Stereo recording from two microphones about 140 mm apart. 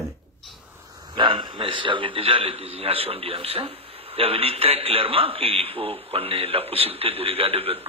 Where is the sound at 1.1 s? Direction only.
35° right (ahead or behind).